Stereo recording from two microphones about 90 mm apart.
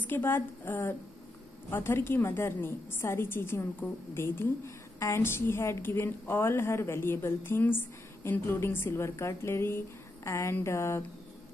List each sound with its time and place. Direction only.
0.0 s a woman's voice: 20° left (ahead or behind)